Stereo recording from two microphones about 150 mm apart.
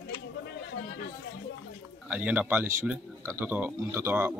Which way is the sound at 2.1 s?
10° right (ahead or behind).